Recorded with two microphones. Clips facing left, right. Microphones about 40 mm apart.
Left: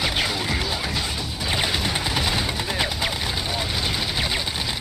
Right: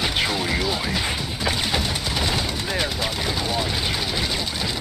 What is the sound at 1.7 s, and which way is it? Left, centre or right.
Machine gun, centre.